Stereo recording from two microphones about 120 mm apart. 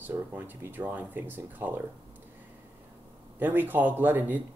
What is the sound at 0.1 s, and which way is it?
Speech, 20° right (ahead or behind).